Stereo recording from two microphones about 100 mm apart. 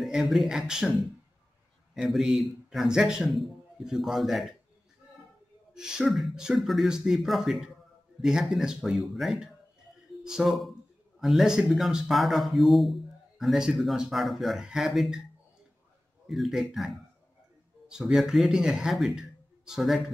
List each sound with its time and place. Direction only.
0.0 s speech: centre (ahead or behind)
5.8 s speech: 5° right (ahead or behind)
16.3 s speech: centre (ahead or behind)